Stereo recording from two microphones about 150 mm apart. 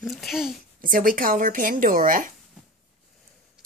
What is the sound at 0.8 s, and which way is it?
Speech, 65° right (ahead or behind).